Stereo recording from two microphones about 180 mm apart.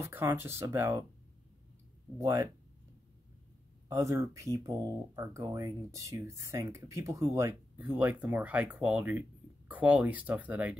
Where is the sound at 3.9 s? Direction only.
15° right (ahead or behind).